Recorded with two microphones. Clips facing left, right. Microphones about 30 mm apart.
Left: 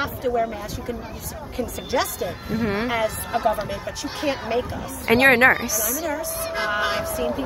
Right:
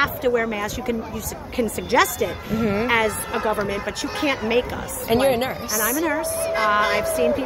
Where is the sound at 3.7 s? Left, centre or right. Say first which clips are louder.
Right 4 dB; right.